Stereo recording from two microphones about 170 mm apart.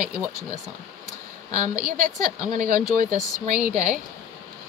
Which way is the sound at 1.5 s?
50° right (ahead or behind).